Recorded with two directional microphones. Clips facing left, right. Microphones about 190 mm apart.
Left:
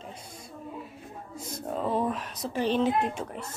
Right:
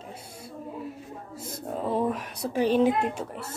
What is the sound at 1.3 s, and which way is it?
Speech, 10° right (ahead or behind).